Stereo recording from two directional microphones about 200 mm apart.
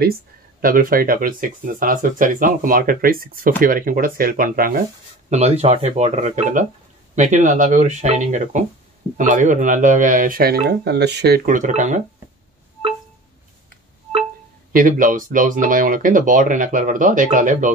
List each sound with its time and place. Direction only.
0.6 s speech: 45° right (ahead or behind)
5.3 s speech: 30° right (ahead or behind)
14.7 s speech: 45° right (ahead or behind)